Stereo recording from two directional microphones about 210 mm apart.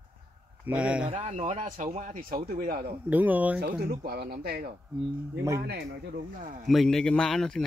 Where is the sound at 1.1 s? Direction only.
35° right (ahead or behind).